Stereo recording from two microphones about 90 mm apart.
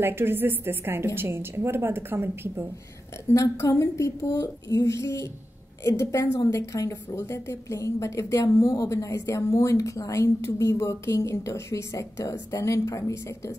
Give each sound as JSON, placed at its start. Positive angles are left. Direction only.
{"t": 0.0, "sound": "a woman's voice", "side_deg": -25}
{"t": 3.3, "sound": "a woman's voice", "side_deg": 30}